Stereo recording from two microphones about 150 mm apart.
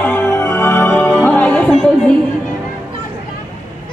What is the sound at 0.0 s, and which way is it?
Music, 10° left (ahead or behind).